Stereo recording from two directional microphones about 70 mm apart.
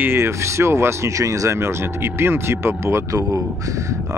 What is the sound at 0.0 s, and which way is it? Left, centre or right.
Speech, right.